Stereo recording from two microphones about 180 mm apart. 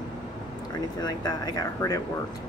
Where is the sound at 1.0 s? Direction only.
20° left (ahead or behind).